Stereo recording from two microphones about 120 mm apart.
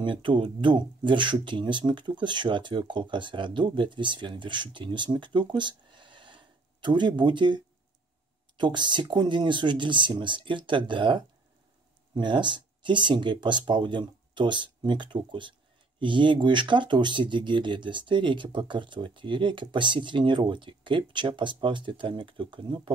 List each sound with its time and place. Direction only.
0.0 s speech: 45° right (ahead or behind)